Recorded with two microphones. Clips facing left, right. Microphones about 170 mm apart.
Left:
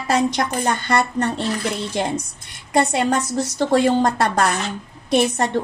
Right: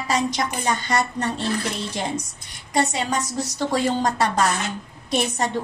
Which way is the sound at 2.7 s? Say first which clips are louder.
Left 4 dB; 55° left (ahead or behind).